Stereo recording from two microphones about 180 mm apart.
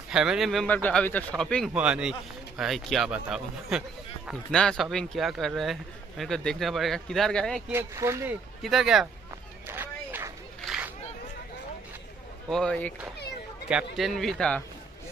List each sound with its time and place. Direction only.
0.1 s speech: 5° right (ahead or behind)
7.7 s speech: 15° right (ahead or behind)
8.6 s speech: centre (ahead or behind)
9.7 s a sound: 10° right (ahead or behind)
12.4 s speech: 5° left (ahead or behind)
13.9 s speech: centre (ahead or behind)